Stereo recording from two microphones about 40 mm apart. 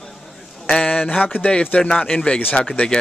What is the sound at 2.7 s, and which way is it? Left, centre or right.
Speech, left.